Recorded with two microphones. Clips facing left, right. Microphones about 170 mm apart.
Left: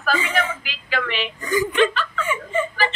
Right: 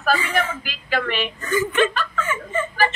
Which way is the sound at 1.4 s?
15° left (ahead or behind).